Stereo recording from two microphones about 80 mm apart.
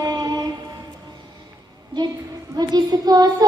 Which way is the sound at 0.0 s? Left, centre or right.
Right.